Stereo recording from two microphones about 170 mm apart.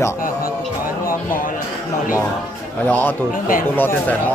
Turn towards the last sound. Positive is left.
turn(degrees=10)  # may be behind; listen again after turning